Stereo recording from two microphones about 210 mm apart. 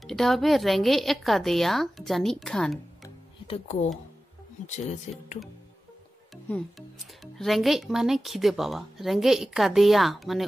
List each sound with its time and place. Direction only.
0.0 s speech: centre (ahead or behind)
3.4 s speech: 30° left (ahead or behind)
7.3 s speech: centre (ahead or behind)